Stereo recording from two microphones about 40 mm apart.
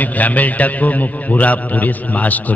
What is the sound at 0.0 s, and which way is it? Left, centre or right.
A man's voice, left.